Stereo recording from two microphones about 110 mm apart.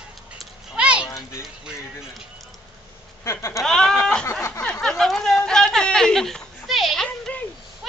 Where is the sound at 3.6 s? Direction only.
5° left (ahead or behind).